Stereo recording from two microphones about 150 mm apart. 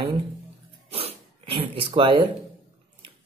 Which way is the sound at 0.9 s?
40° right (ahead or behind).